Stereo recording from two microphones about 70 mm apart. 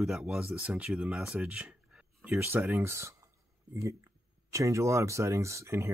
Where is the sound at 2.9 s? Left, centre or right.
Right.